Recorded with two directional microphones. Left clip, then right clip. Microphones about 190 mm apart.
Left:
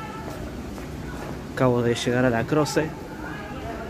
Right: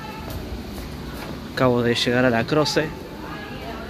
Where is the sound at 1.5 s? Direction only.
Centre (ahead or behind).